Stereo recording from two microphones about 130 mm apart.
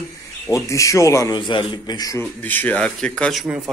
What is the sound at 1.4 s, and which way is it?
Speech, 40° left (ahead or behind).